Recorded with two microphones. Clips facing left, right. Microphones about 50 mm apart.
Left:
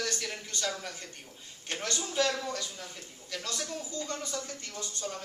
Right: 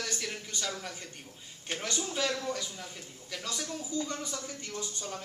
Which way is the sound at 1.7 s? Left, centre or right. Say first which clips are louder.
Left 1 dB; centre.